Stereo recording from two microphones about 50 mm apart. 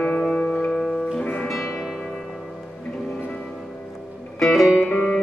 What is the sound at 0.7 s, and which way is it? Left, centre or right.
Music, centre.